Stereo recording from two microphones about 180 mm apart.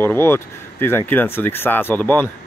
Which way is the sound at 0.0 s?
10° left (ahead or behind).